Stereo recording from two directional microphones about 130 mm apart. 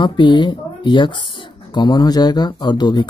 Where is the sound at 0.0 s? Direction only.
35° left (ahead or behind).